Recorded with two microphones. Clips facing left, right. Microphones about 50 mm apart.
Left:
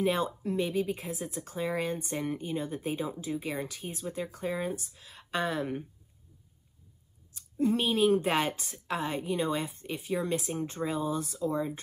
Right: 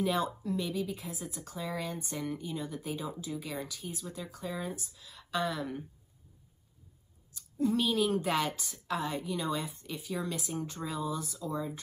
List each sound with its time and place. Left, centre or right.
0.0 s speech: left
7.3 s speech: left